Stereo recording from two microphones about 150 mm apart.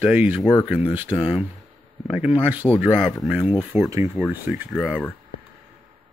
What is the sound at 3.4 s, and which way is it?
Speech, 15° right (ahead or behind).